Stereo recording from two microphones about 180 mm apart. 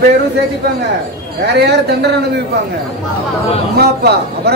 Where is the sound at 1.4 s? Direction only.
70° right (ahead or behind).